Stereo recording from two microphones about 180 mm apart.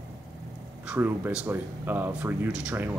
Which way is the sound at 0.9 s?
10° right (ahead or behind).